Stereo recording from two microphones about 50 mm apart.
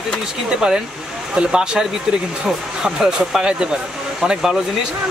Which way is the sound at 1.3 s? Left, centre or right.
Centre.